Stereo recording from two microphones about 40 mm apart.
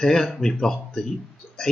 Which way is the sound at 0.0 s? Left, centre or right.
Centre.